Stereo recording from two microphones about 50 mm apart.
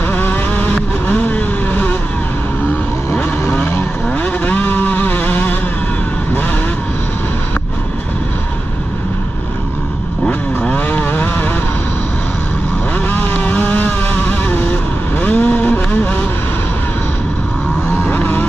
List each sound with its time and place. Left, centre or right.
0.1 s vehicle: left
3.5 s vehicle: left
4.2 s vehicle: left
10.7 s vehicle: left
12.9 s vehicle: left
18.0 s a sound: left